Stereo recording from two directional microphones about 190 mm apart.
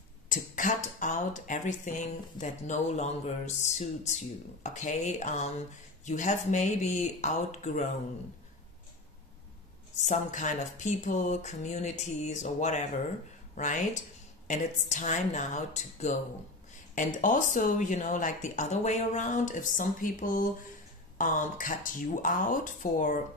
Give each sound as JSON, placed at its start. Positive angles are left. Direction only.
{"t": 0.3, "sound": "speech", "side_deg": 45}
{"t": 9.9, "sound": "speech", "side_deg": 40}
{"t": 14.5, "sound": "speech", "side_deg": 40}